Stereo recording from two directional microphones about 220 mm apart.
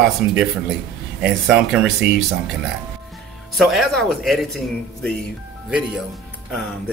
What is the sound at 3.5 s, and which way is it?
Speech, centre (ahead or behind).